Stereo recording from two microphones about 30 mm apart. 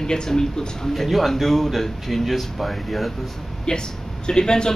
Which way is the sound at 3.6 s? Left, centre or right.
Left.